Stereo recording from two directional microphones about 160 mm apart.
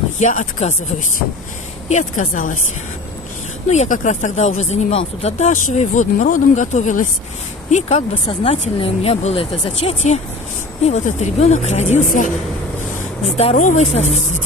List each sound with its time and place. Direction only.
0.2 s speech: 50° left (ahead or behind)
3.7 s speech: 50° left (ahead or behind)
8.3 s a woman's voice: 35° left (ahead or behind); by 12.3 s 55° left (ahead or behind)
13.2 s speech: 40° left (ahead or behind)